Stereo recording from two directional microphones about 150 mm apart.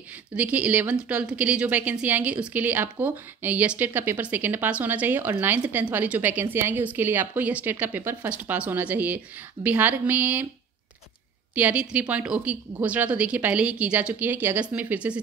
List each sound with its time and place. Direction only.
0.4 s a woman's voice: 10° right (ahead or behind)
11.5 s a woman's voice: 10° right (ahead or behind)